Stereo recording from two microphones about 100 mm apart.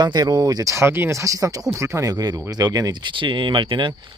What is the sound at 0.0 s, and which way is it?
Speech, 45° right (ahead or behind).